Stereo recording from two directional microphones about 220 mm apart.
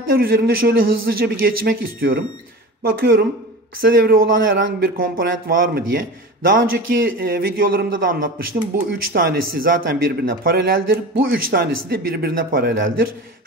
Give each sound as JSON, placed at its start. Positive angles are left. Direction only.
{"t": 0.1, "sound": "a man's voice", "side_deg": -40}